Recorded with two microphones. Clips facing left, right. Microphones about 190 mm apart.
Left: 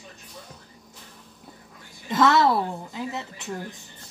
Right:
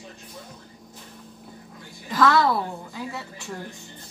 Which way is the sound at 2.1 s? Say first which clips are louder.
Left 1 dB; 25° left (ahead or behind).